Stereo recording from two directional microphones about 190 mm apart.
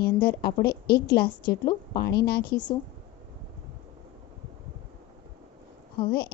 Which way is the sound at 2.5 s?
20° left (ahead or behind).